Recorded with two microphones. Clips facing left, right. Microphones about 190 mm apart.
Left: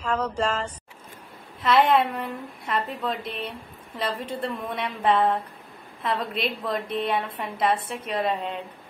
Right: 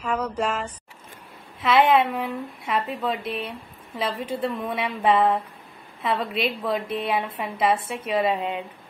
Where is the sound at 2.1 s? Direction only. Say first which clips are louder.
Right 3 dB; 5° right (ahead or behind).